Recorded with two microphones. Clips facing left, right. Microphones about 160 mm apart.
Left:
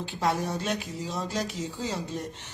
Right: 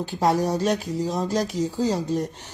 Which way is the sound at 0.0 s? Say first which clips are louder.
Right 6 dB; 40° right (ahead or behind).